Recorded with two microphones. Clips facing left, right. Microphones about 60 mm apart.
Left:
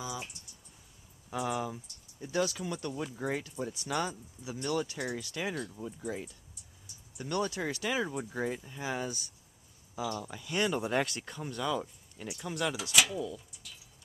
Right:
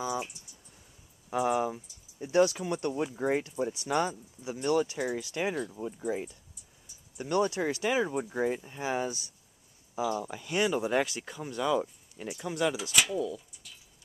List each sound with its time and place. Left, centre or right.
1.3 s speech: centre
2.1 s speech: right; by 8.5 s centre
8.6 s speech: right
10.0 s speech: centre